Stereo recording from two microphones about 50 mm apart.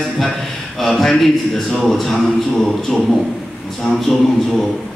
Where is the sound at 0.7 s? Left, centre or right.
Centre.